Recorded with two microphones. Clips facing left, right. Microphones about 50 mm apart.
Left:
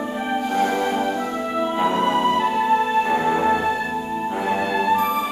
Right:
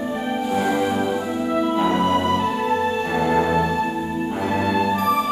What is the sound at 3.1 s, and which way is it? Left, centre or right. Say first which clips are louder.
Music: left 1 dB; centre.